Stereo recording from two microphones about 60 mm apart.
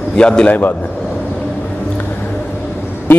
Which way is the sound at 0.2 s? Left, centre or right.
Centre.